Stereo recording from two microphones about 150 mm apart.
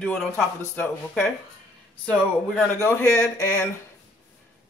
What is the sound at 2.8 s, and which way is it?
Speech, 15° left (ahead or behind).